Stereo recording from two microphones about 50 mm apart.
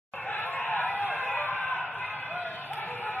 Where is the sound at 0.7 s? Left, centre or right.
Left.